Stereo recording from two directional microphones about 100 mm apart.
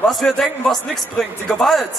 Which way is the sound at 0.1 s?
5° left (ahead or behind).